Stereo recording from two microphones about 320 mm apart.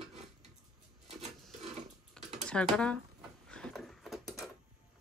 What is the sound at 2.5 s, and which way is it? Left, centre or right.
Speech, centre.